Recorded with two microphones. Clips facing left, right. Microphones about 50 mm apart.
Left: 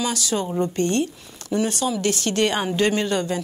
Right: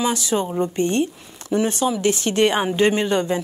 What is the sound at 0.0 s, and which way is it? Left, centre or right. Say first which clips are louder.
Speech: right 3 dB; right.